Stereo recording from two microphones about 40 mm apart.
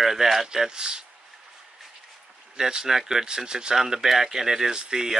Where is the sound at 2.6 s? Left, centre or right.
Centre.